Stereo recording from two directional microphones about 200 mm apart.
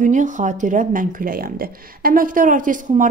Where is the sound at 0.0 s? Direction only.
40° right (ahead or behind).